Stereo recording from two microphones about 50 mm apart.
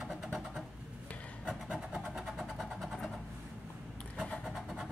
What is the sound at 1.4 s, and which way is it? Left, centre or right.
Vehicle, centre.